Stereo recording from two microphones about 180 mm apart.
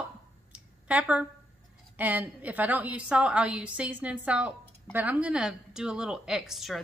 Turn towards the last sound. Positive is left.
turn(degrees=0)  # may be behind; listen again after turning